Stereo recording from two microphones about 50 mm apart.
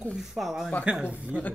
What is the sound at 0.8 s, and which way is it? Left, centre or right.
Speech, centre.